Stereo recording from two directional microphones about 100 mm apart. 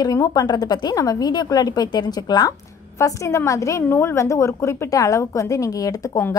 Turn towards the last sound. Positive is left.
turn(degrees=35)  # may be behind; listen again after turning